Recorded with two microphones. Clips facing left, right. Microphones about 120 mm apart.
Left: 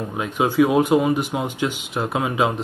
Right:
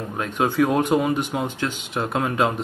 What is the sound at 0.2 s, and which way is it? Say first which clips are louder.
Speech: left 2 dB; 5° left (ahead or behind).